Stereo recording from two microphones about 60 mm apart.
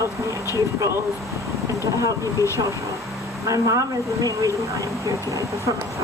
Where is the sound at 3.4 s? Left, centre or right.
Right.